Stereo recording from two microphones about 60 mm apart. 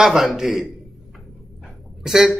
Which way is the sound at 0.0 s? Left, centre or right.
Centre.